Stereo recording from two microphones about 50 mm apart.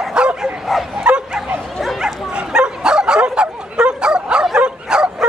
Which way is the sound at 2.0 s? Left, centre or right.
Centre.